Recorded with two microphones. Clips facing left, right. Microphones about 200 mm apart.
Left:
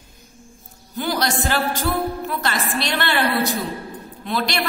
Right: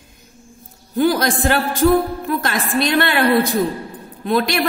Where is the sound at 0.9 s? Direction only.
50° right (ahead or behind).